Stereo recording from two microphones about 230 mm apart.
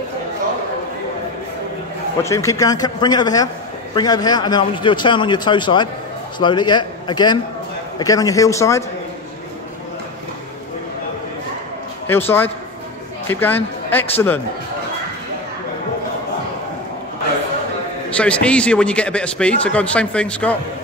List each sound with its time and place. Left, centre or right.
2.2 s a man's voice: centre
12.1 s a man's voice: centre
18.1 s speech: centre